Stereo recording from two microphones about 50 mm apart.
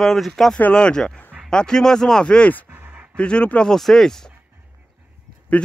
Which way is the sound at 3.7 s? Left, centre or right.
Centre.